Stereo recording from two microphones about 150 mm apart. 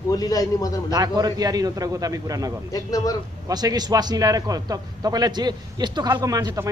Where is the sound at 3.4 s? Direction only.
25° right (ahead or behind).